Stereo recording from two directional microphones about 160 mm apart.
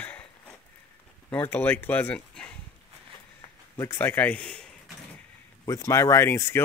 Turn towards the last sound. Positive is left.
turn(degrees=15)  # may be behind; listen again after turning